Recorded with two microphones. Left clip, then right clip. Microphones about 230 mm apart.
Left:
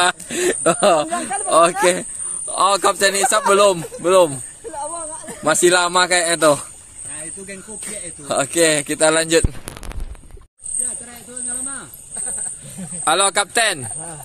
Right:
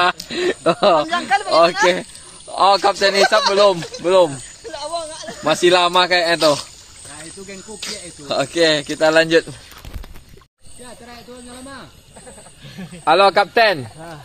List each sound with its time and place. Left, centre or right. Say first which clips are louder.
0.0 s speech: right 1 dB; centre
4.7 s a sound: right 3 dB; left
5.5 s speech: right 1 dB; centre
7.8 s speech: right 3 dB; centre
13.0 s speech: right 5 dB; centre